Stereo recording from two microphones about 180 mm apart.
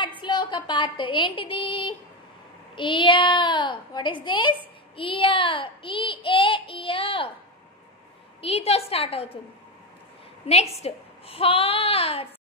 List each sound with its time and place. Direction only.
0.2 s a woman's voice: 25° left (ahead or behind)
2.7 s child singing: 25° left (ahead or behind)
8.4 s a child's voice: 35° left (ahead or behind)
10.4 s a child's voice: 35° left (ahead or behind)